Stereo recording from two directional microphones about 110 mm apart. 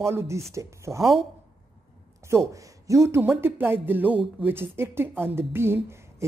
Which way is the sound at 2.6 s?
30° right (ahead or behind).